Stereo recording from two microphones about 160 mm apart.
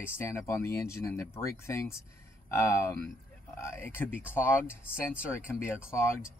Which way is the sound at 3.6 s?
15° left (ahead or behind).